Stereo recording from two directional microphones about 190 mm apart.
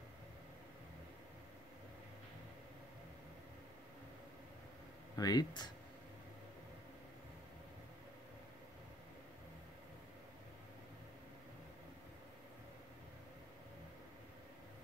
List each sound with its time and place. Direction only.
5.1 s speech: 20° left (ahead or behind)